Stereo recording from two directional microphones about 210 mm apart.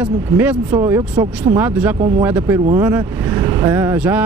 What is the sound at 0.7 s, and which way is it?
Speech, 15° right (ahead or behind).